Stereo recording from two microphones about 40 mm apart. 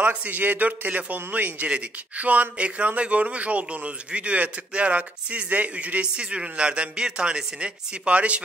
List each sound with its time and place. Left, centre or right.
0.1 s speech: right